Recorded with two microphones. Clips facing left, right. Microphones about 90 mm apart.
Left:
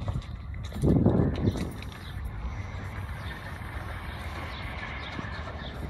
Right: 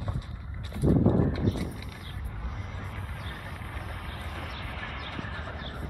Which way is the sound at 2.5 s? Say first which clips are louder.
Even; 25° left (ahead or behind).